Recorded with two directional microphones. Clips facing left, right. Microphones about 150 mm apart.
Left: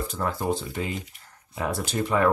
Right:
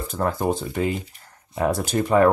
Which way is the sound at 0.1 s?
50° right (ahead or behind).